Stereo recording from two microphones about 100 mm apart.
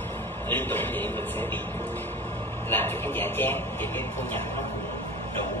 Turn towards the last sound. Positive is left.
turn(degrees=20)  # may be behind; listen again after turning